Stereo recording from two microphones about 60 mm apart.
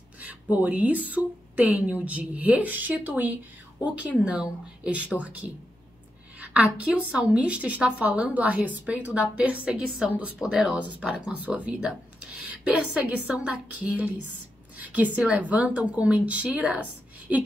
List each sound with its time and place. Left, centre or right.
0.2 s a woman's voice: right